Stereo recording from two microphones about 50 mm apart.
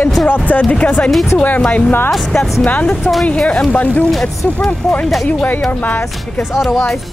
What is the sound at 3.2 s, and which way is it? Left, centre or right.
Speech, left.